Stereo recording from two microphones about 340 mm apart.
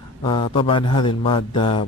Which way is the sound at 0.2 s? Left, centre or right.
Centre.